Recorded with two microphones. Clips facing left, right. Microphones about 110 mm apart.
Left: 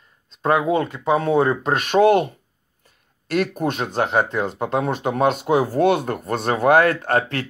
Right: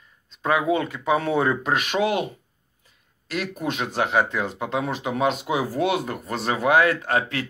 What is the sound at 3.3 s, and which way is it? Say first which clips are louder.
Speech: left 6 dB; 50° left (ahead or behind).